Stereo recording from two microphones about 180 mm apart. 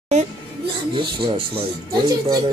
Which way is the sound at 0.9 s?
30° right (ahead or behind).